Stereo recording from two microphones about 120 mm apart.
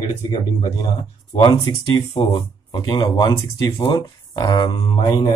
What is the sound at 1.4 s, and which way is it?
Speech, 45° left (ahead or behind).